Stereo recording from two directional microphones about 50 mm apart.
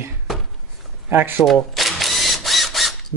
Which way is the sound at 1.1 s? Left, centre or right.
Right.